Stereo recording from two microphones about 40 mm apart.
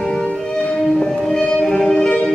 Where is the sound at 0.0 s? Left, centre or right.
Centre.